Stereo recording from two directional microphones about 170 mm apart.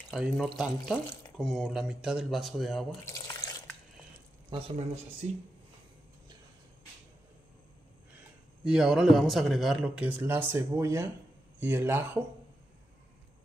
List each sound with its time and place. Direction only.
0.1 s speech: 5° right (ahead or behind)
3.1 s drip: 20° left (ahead or behind)
4.5 s speech: 35° right (ahead or behind)
8.6 s speech: 5° right (ahead or behind)